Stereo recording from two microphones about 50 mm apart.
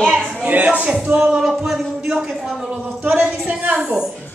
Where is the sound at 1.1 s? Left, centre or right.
Centre.